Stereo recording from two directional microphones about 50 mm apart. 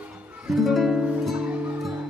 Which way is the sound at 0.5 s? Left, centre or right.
Centre.